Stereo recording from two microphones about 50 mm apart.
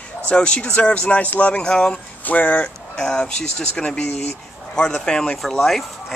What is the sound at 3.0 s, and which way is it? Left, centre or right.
Speech, centre.